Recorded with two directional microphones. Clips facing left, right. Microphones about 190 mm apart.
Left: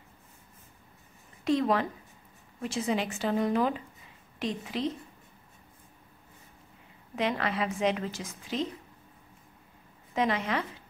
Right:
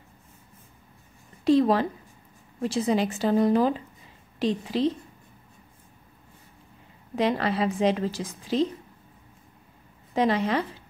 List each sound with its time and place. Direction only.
1.4 s a woman's voice: 35° right (ahead or behind)
7.2 s a woman's voice: 35° right (ahead or behind)
10.1 s a woman's voice: 35° right (ahead or behind)